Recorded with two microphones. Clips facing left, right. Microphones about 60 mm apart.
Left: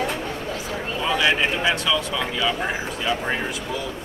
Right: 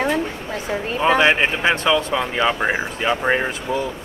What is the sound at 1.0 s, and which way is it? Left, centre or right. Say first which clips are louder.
Speech: right 5 dB; right.